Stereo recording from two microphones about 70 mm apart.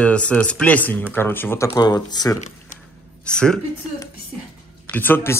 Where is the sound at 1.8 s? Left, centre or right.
Left.